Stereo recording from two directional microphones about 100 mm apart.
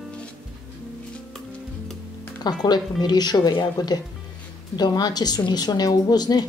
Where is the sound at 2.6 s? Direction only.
45° left (ahead or behind).